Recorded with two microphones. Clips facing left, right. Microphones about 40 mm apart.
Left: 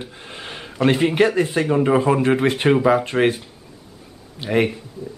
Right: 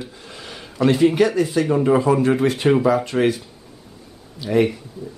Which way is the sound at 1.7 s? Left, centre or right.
Left.